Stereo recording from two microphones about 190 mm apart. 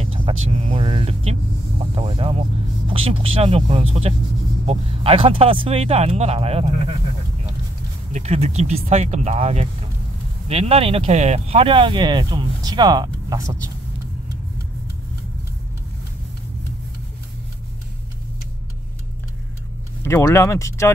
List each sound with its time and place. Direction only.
0.0 s vehicle: 30° right (ahead or behind)
2.0 s music: 30° right (ahead or behind)
2.9 s speech: 30° right (ahead or behind)
8.1 s speech: 35° right (ahead or behind)
20.0 s speech: 15° left (ahead or behind)